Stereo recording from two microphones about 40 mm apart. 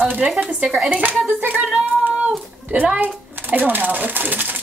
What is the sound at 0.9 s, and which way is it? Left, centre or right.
Speech, right.